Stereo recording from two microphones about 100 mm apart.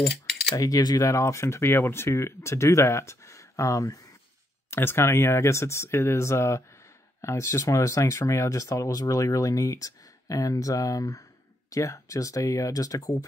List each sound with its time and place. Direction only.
0.6 s speech: 40° left (ahead or behind)
4.6 s speech: 25° left (ahead or behind)